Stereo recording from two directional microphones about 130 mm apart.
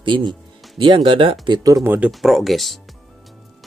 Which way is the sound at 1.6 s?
25° right (ahead or behind).